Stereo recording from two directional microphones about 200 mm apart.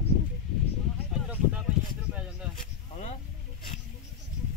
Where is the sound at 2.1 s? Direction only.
5° right (ahead or behind).